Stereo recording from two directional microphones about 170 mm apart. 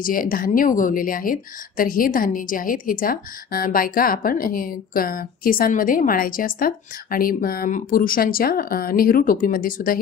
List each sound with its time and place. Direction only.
0.0 s a woman's voice: 55° left (ahead or behind)